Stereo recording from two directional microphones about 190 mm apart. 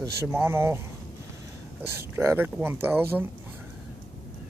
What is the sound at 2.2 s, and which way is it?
Speech, 15° right (ahead or behind).